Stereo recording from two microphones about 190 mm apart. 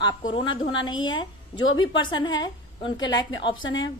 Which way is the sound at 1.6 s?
90° left.